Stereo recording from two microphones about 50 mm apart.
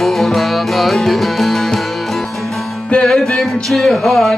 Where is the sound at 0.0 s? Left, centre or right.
Centre.